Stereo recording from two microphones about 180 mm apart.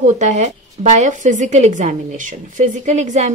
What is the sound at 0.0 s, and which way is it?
Speech, 40° right (ahead or behind).